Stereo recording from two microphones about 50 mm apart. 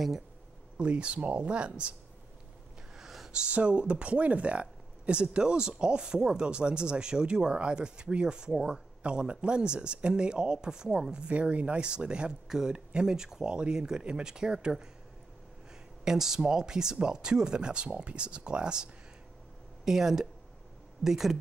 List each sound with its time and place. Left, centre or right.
0.7 s speech: right
3.0 s a sound: centre
3.3 s speech: right
16.0 s speech: centre